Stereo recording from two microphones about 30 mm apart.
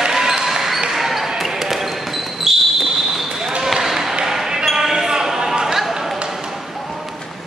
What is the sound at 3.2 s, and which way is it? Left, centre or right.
Basketball bounce, centre.